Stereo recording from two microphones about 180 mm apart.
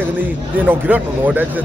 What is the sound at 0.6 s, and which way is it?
Speech, 10° right (ahead or behind).